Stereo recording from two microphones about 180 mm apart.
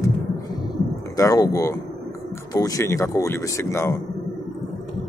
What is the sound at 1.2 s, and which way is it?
Speech, 20° left (ahead or behind).